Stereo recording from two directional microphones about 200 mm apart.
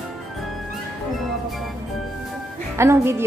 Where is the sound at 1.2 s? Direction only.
Centre (ahead or behind).